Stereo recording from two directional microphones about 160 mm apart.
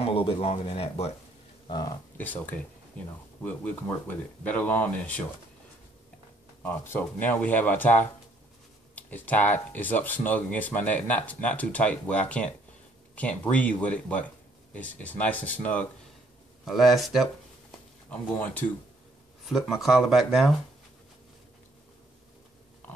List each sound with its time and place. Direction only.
0.0 s speech: 35° left (ahead or behind)
2.1 s speech: 10° left (ahead or behind)
6.6 s speech: 10° left (ahead or behind)
16.6 s speech: centre (ahead or behind)
19.4 s speech: centre (ahead or behind)